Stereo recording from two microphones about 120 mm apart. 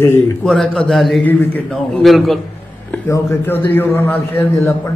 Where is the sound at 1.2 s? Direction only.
15° left (ahead or behind).